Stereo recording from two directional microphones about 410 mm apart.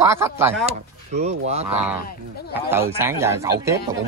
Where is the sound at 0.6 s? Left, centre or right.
Centre.